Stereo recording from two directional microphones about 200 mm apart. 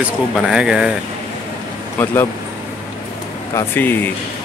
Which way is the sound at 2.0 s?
10° left (ahead or behind).